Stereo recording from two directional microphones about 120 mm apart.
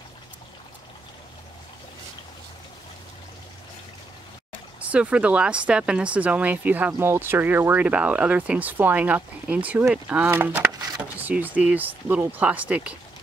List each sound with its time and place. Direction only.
4.7 s speech: 10° right (ahead or behind)